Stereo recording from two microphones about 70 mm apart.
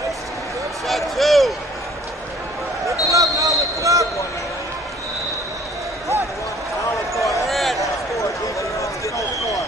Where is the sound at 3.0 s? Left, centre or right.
Right.